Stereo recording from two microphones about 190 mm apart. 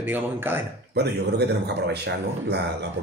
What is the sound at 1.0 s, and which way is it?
Speech, 60° right (ahead or behind).